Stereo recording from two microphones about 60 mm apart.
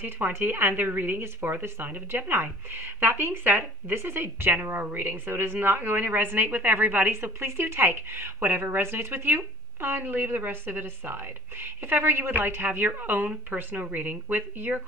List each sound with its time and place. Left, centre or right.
0.0 s speech: right